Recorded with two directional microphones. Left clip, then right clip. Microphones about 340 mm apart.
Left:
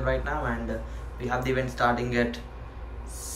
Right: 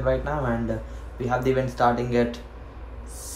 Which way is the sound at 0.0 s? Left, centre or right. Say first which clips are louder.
Right 3 dB; centre.